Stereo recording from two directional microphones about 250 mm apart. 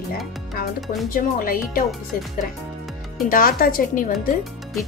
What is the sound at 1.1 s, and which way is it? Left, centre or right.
Speech, left.